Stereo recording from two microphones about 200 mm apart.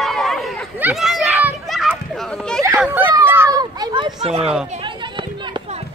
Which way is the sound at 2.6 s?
10° right (ahead or behind).